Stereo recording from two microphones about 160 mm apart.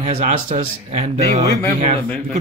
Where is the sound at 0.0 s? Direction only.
50° right (ahead or behind).